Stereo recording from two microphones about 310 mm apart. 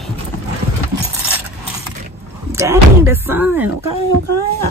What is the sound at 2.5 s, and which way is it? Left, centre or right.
Speech, centre.